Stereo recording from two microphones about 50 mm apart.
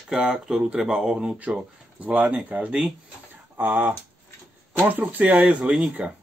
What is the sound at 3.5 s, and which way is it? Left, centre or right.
Speech, right.